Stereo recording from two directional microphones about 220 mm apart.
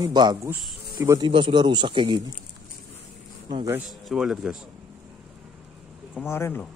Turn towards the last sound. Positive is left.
turn(degrees=10)  # may be behind; listen again after turning